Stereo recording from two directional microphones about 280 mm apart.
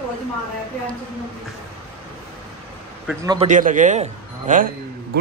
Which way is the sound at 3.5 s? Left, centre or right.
Right.